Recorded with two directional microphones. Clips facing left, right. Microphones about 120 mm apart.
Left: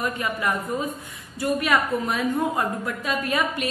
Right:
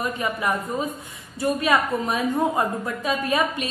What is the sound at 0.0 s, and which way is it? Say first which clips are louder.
A woman's voice: right 1 dB; 25° right (ahead or behind).